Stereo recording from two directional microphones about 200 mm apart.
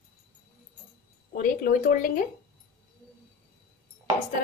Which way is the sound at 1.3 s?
45° left (ahead or behind).